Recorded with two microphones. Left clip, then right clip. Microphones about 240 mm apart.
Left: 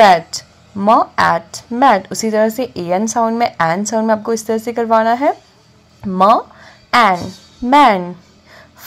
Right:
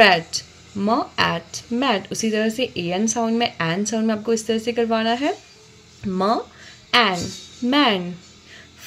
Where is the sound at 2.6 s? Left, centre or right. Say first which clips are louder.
Left 6 dB; left.